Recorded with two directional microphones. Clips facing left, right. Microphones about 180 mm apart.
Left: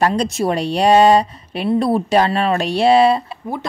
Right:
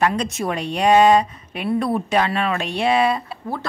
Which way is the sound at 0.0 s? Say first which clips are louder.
Left 4 dB; 35° left (ahead or behind).